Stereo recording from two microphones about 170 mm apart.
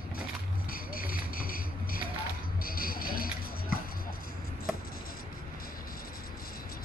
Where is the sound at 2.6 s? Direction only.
60° left (ahead or behind).